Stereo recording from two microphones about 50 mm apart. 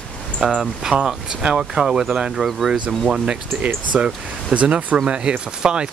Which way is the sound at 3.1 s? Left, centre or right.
Centre.